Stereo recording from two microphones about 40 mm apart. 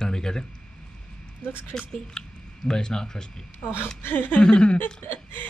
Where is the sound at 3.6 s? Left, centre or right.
Left.